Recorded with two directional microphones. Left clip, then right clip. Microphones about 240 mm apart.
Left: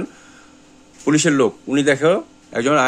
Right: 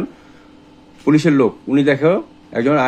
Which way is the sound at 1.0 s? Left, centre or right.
Centre.